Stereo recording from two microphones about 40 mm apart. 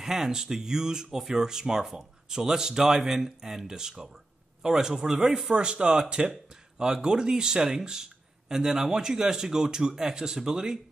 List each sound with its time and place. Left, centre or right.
0.0 s a man's voice: centre